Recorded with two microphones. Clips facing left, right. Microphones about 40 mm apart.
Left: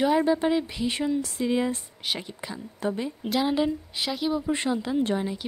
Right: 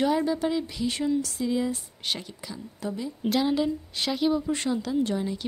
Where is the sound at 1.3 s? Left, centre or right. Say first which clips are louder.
Left 2 dB; left.